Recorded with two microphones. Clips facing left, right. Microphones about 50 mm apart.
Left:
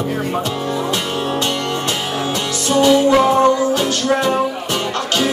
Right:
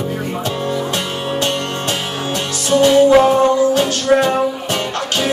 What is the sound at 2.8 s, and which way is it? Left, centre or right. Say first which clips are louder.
Music: right 3 dB; centre.